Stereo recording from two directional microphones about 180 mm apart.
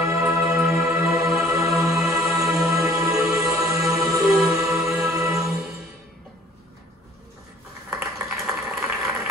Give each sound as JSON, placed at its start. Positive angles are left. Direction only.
{"t": 0.4, "sound": "music", "side_deg": 0}
{"t": 2.9, "sound": "music", "side_deg": -15}
{"t": 3.2, "sound": "music", "side_deg": -5}
{"t": 7.9, "sound": "a sound", "side_deg": -5}